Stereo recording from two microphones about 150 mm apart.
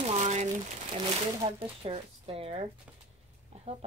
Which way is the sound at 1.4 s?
40° right (ahead or behind).